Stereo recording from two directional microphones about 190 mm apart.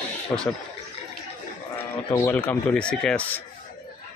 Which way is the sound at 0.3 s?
15° left (ahead or behind).